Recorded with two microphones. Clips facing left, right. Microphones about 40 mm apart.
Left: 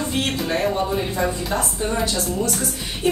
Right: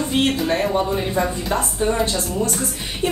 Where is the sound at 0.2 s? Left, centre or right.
Right.